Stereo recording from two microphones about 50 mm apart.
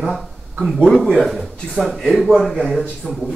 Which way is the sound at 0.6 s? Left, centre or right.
Centre.